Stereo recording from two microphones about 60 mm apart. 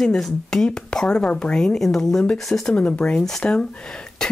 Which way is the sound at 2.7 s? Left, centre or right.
Left.